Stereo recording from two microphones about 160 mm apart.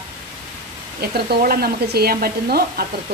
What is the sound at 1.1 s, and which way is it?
Speech, 75° right (ahead or behind).